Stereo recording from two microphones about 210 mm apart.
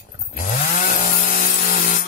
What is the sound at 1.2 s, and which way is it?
Sawing, 45° left (ahead or behind).